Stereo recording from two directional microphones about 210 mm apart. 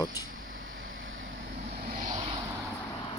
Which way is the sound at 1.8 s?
40° right (ahead or behind).